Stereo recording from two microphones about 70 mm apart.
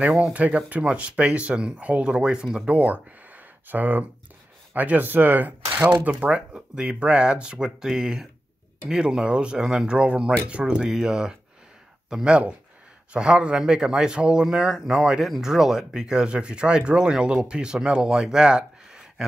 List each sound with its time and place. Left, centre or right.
0.0 s a man's voice: centre
6.1 s a man's voice: centre